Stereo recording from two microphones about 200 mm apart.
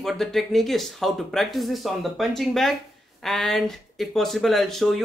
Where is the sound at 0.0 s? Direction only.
Centre (ahead or behind).